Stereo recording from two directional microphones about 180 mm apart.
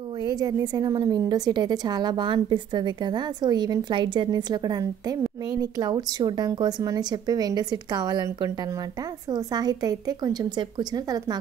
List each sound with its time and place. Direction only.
0.2 s a woman's voice: 20° right (ahead or behind)